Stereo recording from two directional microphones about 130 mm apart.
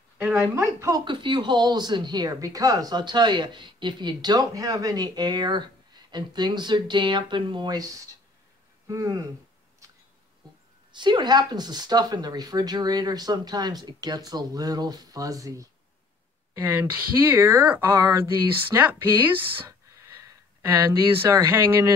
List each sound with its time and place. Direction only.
0.4 s speech: 20° right (ahead or behind)
1.0 s speech: 35° right (ahead or behind)
10.9 s speech: 35° right (ahead or behind)
16.7 s speech: 15° right (ahead or behind)